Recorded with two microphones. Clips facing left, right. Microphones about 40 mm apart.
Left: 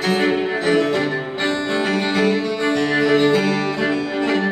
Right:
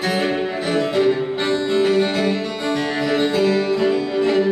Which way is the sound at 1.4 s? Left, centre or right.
Left.